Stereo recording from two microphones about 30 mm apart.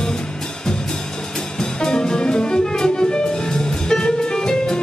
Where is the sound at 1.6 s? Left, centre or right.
Left.